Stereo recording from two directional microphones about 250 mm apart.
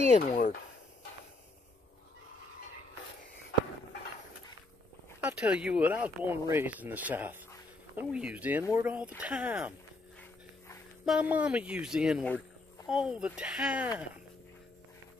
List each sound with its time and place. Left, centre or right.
0.2 s speech: left
5.2 s speech: centre
11.1 s speech: centre